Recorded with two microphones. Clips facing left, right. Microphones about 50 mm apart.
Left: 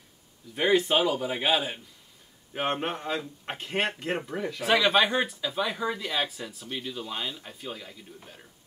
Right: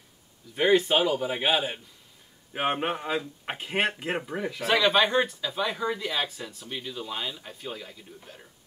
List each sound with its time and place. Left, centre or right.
0.6 s speech: centre
4.6 s speech: centre